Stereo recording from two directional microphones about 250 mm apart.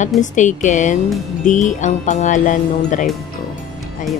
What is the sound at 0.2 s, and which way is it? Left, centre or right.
Speech, left.